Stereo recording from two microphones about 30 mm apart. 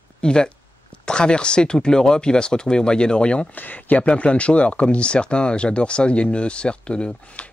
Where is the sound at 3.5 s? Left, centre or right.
Left.